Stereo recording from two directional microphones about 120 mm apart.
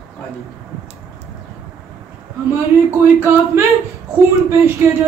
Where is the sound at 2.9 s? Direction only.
20° right (ahead or behind).